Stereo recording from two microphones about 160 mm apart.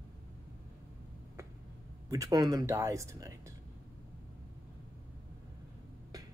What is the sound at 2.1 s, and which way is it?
Speech, 20° right (ahead or behind).